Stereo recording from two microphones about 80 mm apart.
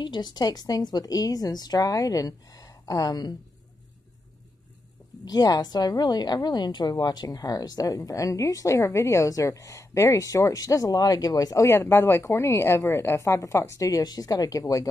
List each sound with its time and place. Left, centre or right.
0.0 s a woman's voice: left
5.2 s a woman's voice: left
11.6 s speech: left